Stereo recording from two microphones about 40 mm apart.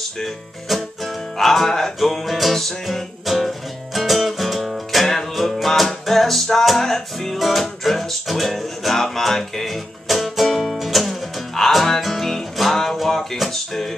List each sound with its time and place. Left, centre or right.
0.2 s music: centre